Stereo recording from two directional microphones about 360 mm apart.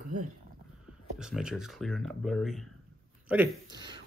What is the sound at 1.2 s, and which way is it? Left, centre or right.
Speech, centre.